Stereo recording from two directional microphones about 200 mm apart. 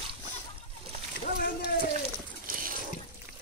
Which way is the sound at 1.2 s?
45° left (ahead or behind).